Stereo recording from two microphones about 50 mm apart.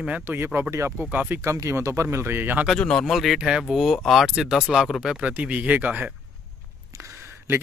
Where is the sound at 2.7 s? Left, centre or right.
Centre.